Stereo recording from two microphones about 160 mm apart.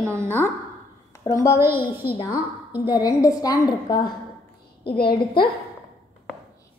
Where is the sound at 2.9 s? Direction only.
20° left (ahead or behind).